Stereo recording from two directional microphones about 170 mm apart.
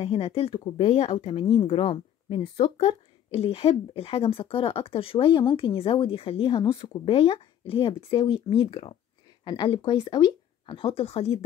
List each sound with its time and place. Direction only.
0.0 s speech: 35° left (ahead or behind)